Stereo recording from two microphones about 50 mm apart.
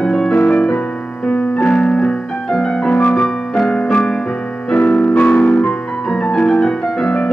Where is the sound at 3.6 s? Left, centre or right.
Centre.